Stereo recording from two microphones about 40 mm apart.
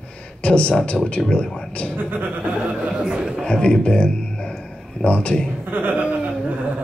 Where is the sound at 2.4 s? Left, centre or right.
Right.